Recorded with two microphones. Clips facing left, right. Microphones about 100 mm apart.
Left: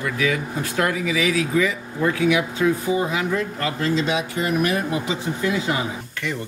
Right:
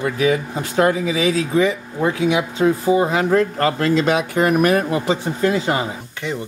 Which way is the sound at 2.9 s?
50° right (ahead or behind).